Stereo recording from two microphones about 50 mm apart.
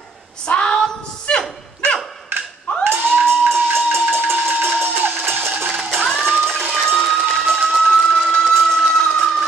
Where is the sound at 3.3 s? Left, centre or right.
Right.